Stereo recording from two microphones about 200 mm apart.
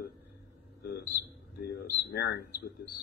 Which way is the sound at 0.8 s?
50° left (ahead or behind).